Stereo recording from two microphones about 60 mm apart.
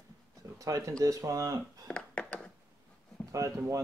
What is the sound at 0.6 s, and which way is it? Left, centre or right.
Speech, right.